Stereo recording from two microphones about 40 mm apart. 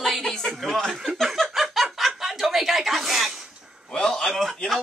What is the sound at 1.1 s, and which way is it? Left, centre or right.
Snicker, centre.